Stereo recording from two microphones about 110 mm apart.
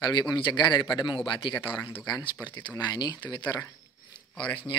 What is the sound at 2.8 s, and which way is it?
A man's voice, 40° left (ahead or behind).